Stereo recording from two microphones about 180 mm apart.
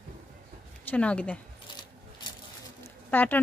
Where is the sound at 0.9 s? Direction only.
5° left (ahead or behind).